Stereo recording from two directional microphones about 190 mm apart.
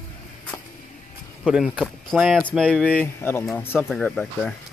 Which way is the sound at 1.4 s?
5° right (ahead or behind).